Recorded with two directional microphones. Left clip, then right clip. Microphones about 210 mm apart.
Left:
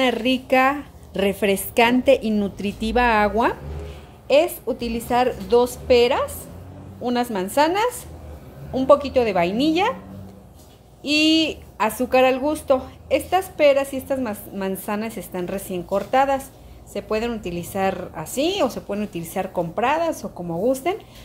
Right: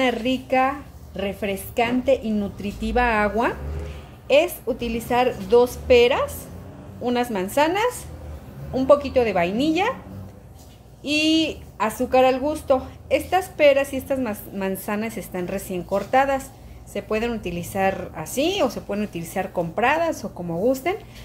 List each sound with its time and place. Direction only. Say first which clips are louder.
0.0 s a woman's voice: left 2 dB; 15° left (ahead or behind)
11.0 s a woman's voice: left 2 dB; 10° left (ahead or behind)